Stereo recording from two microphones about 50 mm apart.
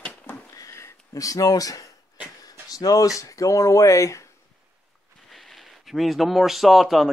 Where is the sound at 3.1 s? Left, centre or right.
Left.